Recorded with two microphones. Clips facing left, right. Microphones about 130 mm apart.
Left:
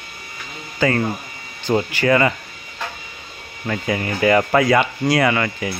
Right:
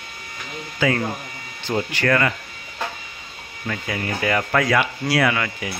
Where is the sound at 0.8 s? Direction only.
Centre (ahead or behind).